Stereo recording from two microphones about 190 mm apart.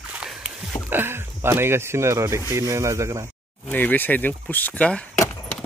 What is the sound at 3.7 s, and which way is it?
Speech, 10° left (ahead or behind).